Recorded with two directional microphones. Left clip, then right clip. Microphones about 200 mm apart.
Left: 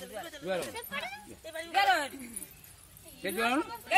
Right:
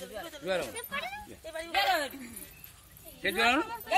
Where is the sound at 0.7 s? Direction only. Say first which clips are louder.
Right 1 dB; 15° left (ahead or behind).